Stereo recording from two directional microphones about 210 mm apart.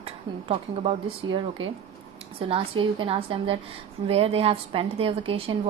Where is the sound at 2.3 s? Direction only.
25° right (ahead or behind).